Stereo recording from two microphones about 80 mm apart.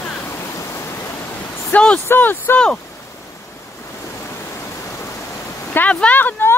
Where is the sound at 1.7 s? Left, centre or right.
Centre.